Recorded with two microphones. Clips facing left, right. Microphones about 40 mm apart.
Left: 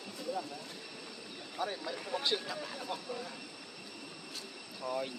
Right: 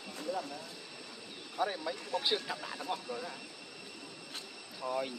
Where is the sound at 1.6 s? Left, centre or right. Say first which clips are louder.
Right 3 dB; centre.